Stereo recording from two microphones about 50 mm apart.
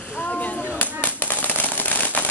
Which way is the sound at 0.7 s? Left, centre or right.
Left.